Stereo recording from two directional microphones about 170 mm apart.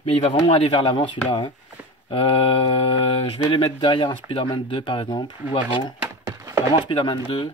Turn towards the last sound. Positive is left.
turn(degrees=30)  # may be behind; listen again after turning